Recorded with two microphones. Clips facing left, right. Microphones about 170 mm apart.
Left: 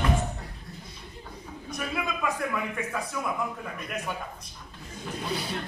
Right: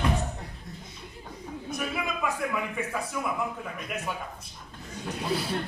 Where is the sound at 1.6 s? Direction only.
Centre (ahead or behind).